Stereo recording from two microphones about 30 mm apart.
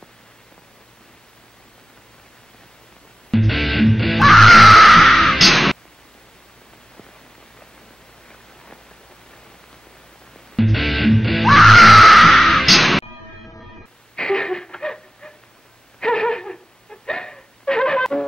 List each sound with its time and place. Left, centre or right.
3.3 s music: centre
10.5 s music: centre
14.1 s a sound: left